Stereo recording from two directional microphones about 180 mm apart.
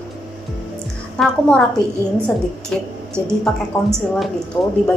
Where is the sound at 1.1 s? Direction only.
5° left (ahead or behind).